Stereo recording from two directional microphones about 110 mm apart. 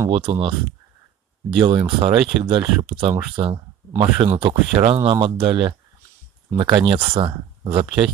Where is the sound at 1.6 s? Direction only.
55° right (ahead or behind).